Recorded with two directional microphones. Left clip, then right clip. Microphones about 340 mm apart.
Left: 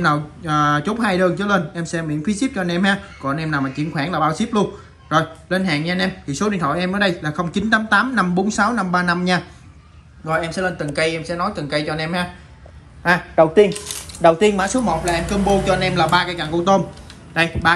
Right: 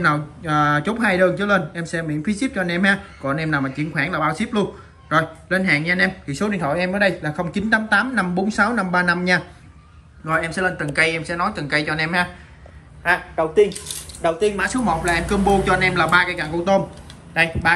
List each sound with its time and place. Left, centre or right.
0.0 s speech: centre
13.0 s a man's voice: left
13.7 s speech: centre